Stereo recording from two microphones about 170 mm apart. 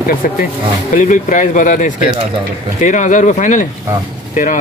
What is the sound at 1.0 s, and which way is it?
Speech, 50° left (ahead or behind).